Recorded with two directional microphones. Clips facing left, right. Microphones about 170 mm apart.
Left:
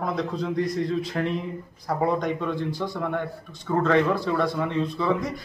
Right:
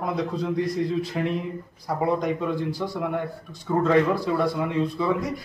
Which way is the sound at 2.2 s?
10° right (ahead or behind).